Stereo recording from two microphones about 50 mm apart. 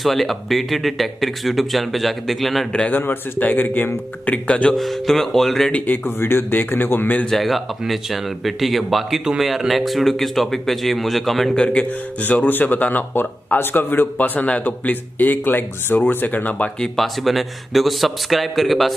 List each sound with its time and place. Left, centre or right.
0.0 s speech: centre
2.9 s speech: left
4.3 s speech: left
4.7 s speech: centre
5.7 s a man's voice: left
7.2 s speech: centre
11.5 s speech: left
16.8 s speech: centre